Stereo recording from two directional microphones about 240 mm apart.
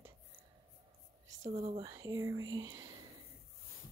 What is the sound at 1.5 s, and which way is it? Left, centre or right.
Speech, right.